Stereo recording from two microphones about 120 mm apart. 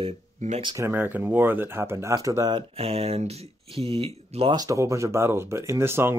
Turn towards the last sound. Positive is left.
turn(degrees=-20)  # may be behind; listen again after turning